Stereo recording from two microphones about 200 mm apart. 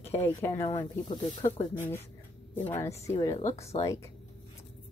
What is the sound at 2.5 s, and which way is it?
Speech, 35° left (ahead or behind).